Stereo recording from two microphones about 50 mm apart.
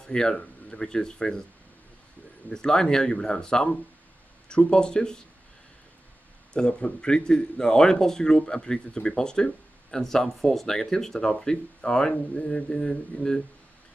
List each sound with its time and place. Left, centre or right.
0.0 s speech: centre
2.5 s speech: centre
6.5 s speech: centre